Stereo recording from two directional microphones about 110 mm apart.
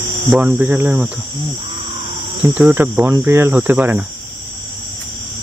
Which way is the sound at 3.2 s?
20° right (ahead or behind).